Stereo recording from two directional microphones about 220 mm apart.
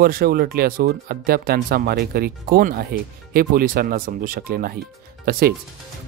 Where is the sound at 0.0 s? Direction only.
45° right (ahead or behind).